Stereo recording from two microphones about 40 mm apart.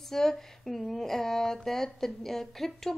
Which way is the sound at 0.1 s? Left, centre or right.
Centre.